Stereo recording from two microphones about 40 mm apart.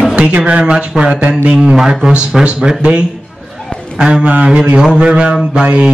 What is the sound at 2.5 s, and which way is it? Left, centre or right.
Speech, right.